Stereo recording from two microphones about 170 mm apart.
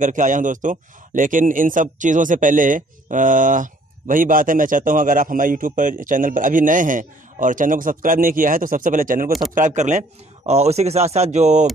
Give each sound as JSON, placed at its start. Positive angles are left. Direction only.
{"t": 0.0, "sound": "a man's voice", "side_deg": -50}